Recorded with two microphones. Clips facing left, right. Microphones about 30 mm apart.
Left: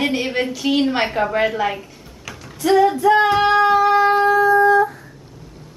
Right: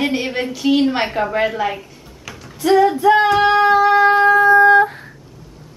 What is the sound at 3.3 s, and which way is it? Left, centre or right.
Cat, centre.